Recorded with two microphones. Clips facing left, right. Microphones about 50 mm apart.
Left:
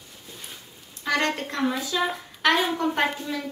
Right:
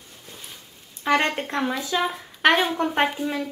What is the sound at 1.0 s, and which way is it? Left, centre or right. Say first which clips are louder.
A woman's voice: right 3 dB; right.